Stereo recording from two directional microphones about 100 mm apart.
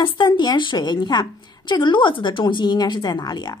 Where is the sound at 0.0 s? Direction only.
50° left (ahead or behind).